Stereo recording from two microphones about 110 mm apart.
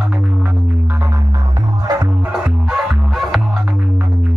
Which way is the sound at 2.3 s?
10° right (ahead or behind).